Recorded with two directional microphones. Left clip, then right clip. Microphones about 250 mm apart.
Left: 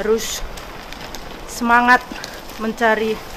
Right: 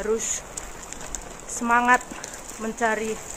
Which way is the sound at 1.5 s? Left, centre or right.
Centre.